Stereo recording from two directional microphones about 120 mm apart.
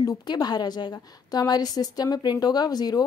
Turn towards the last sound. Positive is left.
turn(degrees=35)  # may be behind; listen again after turning